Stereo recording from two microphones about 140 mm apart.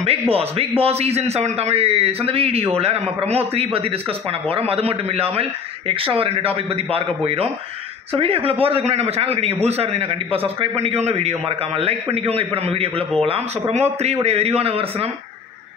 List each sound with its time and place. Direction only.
0.3 s a man's voice: 45° right (ahead or behind)